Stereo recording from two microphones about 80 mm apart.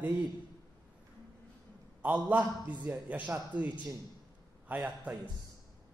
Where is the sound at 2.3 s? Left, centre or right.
Centre.